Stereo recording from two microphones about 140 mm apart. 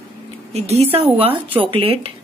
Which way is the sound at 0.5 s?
50° right (ahead or behind).